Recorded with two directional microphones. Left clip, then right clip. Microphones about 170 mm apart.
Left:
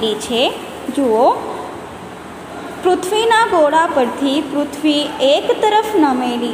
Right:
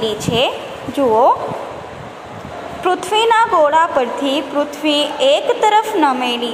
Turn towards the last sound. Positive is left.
turn(degrees=-10)  # may be behind; listen again after turning